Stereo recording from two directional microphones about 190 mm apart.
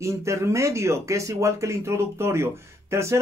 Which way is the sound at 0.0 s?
15° right (ahead or behind).